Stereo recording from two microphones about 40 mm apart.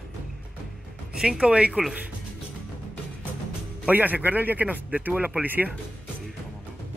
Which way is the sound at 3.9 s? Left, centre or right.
Right.